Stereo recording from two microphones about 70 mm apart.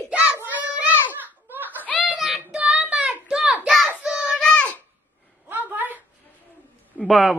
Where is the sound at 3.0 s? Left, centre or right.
Centre.